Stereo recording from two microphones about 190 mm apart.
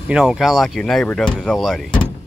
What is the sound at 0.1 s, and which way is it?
Speech, 5° right (ahead or behind).